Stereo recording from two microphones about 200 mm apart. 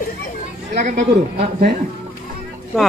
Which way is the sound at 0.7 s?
55° right (ahead or behind).